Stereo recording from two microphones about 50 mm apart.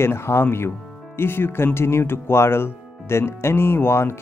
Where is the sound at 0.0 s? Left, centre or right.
Left.